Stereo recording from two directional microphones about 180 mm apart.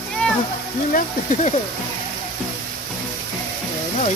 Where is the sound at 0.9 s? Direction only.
45° left (ahead or behind).